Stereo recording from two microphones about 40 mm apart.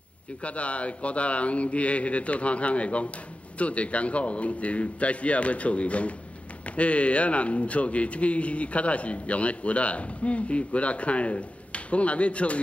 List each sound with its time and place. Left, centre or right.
0.4 s speech: left